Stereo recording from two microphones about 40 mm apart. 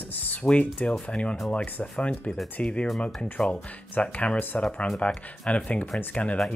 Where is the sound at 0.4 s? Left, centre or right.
Left.